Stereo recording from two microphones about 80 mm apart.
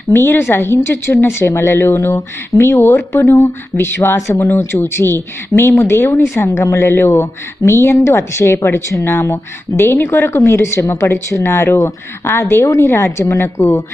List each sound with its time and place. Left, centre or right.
0.1 s a woman's voice: left